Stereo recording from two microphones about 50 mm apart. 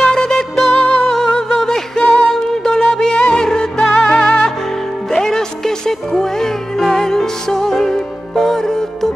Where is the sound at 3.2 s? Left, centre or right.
Centre.